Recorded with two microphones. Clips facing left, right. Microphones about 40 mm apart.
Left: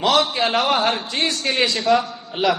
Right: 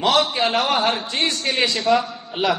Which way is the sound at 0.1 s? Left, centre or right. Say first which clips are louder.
Left 1 dB; centre.